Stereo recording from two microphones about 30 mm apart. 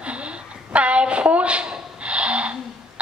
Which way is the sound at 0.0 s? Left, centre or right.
Right.